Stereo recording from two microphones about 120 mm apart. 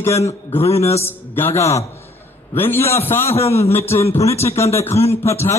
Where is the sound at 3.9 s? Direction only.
25° left (ahead or behind).